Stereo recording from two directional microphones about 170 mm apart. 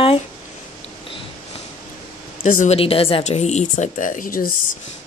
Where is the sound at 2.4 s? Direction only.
50° left (ahead or behind).